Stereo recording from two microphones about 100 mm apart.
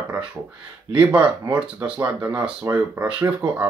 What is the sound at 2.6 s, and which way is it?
Speech, 25° right (ahead or behind).